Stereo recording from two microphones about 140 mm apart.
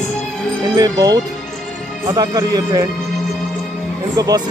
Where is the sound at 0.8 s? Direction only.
25° right (ahead or behind).